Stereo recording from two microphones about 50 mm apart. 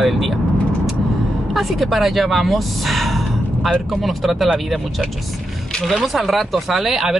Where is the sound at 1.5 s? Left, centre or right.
Centre.